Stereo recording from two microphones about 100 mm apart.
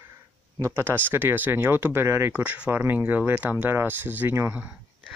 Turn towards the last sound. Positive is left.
turn(degrees=-15)  # may be behind; listen again after turning